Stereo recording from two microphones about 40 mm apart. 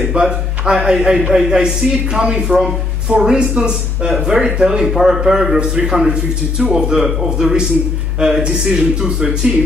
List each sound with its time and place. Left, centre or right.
0.0 s a man's voice: right